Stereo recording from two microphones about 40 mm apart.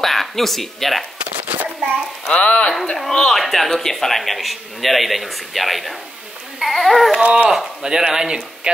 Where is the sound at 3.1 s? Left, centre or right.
Centre.